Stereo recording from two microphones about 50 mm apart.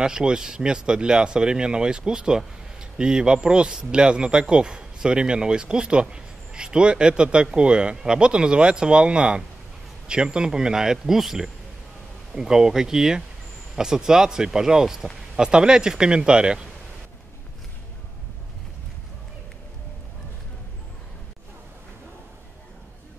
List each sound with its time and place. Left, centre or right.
0.0 s speech: centre